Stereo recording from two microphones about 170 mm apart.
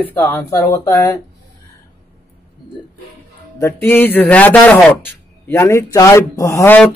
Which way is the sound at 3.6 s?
10° left (ahead or behind).